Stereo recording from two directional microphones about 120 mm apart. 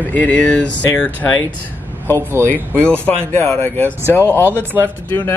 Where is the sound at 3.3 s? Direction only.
20° left (ahead or behind).